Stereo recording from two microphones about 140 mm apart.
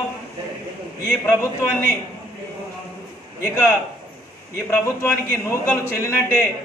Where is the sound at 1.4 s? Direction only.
15° left (ahead or behind).